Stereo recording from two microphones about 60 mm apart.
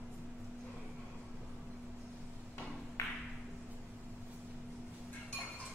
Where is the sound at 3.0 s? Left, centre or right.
Left.